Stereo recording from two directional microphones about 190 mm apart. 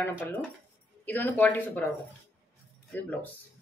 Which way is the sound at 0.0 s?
10° left (ahead or behind).